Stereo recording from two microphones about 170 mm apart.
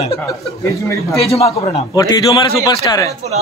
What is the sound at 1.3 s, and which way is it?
Speech, 35° left (ahead or behind).